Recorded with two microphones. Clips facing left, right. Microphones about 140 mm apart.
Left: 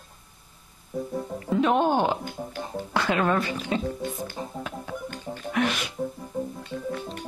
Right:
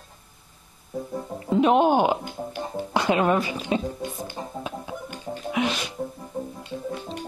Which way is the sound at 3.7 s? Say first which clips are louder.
Right 1 dB; 20° right (ahead or behind).